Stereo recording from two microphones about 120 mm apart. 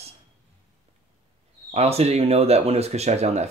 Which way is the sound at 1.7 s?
60° right (ahead or behind).